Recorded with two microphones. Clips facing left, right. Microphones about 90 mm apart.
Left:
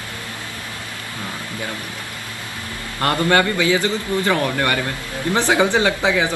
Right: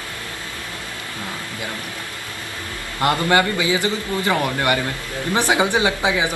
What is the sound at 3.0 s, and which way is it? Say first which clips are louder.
A man's voice: even; 15° right (ahead or behind).